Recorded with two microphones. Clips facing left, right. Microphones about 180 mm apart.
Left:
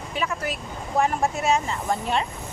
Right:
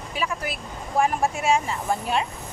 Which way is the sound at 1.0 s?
10° right (ahead or behind).